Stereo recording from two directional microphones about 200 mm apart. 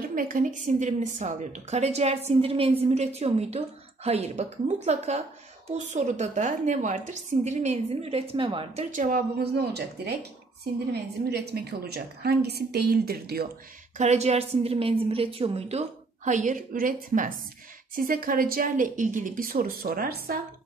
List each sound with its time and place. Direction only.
0.0 s a woman's voice: 45° right (ahead or behind); by 8.8 s 25° right (ahead or behind)
8.9 s a woman's voice: 40° right (ahead or behind)
13.9 s a woman's voice: 35° right (ahead or behind)